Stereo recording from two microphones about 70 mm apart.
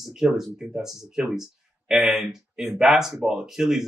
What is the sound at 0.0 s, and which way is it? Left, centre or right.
A man's voice, centre.